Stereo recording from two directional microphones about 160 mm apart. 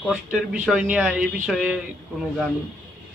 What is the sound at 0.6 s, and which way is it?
Speech, 5° right (ahead or behind).